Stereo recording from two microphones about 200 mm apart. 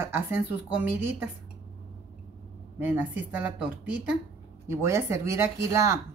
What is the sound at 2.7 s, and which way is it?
Speech, 10° right (ahead or behind).